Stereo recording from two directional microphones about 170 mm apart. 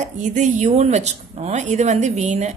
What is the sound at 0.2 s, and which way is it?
A woman's voice, 45° right (ahead or behind).